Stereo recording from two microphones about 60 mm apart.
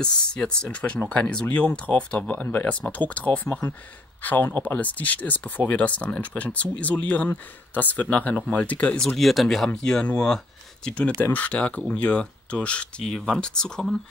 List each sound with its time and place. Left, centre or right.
0.0 s speech: centre
9.0 s speech: centre
9.8 s speech: centre
11.1 s speech: left; by 13.9 s centre